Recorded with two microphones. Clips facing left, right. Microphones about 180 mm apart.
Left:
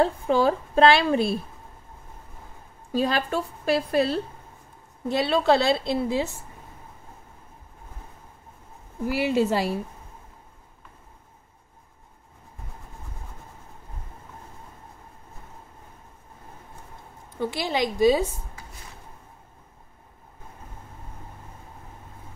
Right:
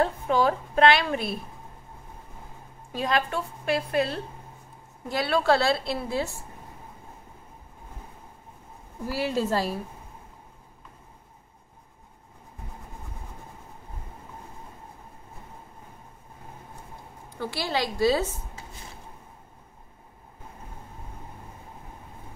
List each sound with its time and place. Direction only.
0.0 s a woman's voice: 30° left (ahead or behind)
2.9 s a woman's voice: 30° left (ahead or behind)
9.0 s a woman's voice: 15° left (ahead or behind)
17.4 s a woman's voice: 20° left (ahead or behind)